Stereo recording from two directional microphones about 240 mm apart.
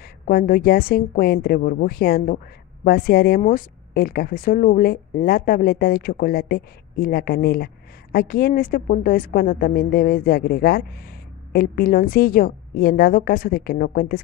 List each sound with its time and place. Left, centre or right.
0.0 s a woman's voice: left